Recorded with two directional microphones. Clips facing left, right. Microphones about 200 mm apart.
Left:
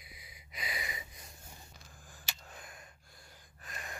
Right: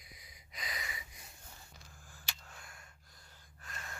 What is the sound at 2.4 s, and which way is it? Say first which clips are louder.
Gasp: left 4 dB; 20° left (ahead or behind).